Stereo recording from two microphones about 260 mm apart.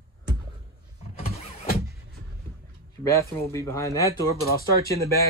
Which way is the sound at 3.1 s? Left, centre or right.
Centre.